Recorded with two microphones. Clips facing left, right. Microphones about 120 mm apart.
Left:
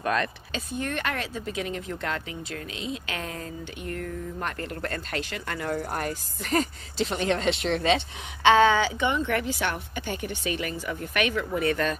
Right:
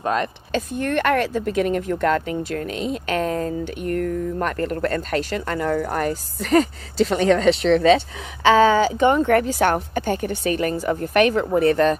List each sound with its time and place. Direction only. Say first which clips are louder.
0.0 s speech: right 4 dB; 25° right (ahead or behind)
0.5 s speech: right 8 dB; 55° right (ahead or behind)
7.7 s speech: right 9 dB; 35° right (ahead or behind)